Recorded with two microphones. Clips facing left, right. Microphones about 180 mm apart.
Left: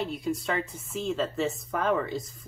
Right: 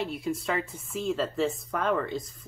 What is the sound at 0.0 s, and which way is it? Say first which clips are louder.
Speech: even; centre (ahead or behind).